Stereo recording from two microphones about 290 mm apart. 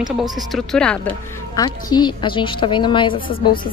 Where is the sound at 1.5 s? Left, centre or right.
Centre.